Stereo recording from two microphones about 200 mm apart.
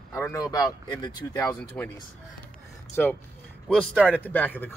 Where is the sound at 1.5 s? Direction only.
5° left (ahead or behind).